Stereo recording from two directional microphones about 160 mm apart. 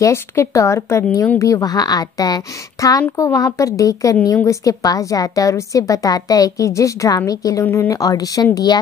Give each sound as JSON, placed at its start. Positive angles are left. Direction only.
{"t": 0.0, "sound": "speech", "side_deg": 15}